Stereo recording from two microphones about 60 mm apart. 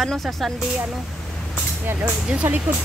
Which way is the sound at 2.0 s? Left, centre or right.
Centre.